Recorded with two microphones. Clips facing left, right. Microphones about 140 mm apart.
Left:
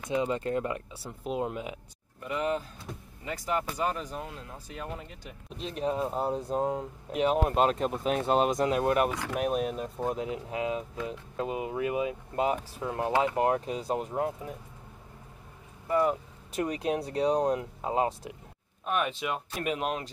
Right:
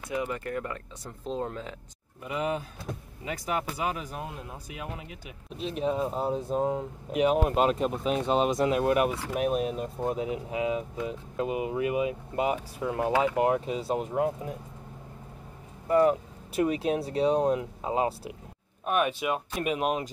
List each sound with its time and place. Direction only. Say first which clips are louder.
0.1 s speech: left 3 dB; 20° left (ahead or behind)
2.2 s speech: even; 10° right (ahead or behind)
3.7 s speech: left 1 dB; 10° right (ahead or behind)
16.1 s speech: right 4 dB; 10° right (ahead or behind)